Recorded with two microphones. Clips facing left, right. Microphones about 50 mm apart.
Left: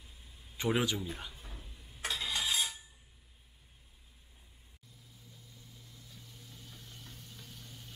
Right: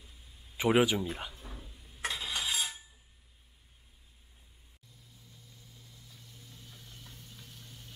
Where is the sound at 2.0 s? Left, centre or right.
Centre.